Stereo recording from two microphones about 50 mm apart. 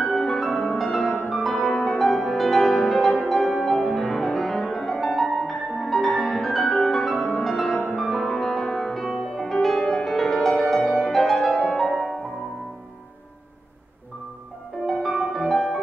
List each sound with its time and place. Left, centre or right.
0.0 s music: centre
14.9 s music: centre